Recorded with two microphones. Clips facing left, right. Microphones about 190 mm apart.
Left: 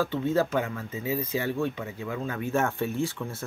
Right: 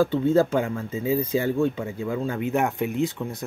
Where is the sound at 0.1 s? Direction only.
30° right (ahead or behind).